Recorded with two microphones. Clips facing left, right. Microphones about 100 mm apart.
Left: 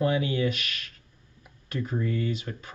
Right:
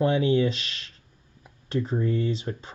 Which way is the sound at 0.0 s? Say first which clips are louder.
Right 4 dB; 30° right (ahead or behind).